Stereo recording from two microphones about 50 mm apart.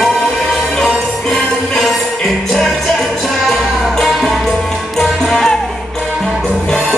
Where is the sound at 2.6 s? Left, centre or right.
Centre.